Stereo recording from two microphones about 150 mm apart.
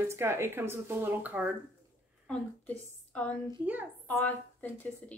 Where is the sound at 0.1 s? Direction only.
15° right (ahead or behind).